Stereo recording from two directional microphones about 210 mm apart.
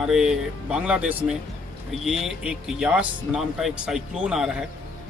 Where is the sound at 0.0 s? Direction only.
5° right (ahead or behind).